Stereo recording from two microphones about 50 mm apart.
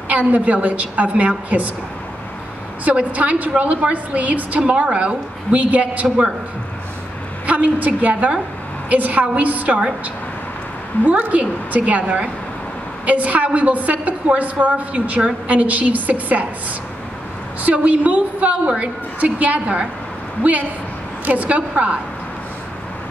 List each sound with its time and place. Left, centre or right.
0.1 s a woman's voice: right
2.8 s a woman's voice: right
7.4 s a woman's voice: right
11.1 s a woman's voice: right
17.6 s a woman's voice: right